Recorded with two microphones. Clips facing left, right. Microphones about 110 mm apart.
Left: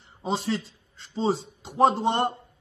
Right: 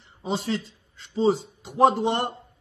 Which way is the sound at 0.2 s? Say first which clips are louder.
Even; 30° left (ahead or behind).